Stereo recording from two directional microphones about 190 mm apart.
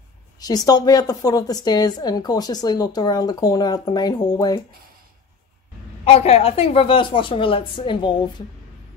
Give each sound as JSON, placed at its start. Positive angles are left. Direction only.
{"t": 0.4, "sound": "a woman's voice", "side_deg": 20}
{"t": 6.0, "sound": "a woman's voice", "side_deg": 30}